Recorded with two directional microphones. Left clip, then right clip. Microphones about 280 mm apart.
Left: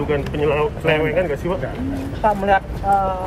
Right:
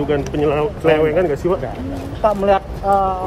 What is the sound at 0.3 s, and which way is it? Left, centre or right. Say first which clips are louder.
Speech: right 1 dB; right.